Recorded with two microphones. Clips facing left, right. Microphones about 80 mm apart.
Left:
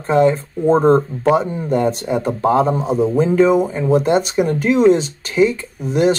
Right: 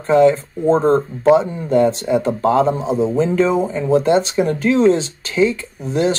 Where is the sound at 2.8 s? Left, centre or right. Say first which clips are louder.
Left 1 dB; centre.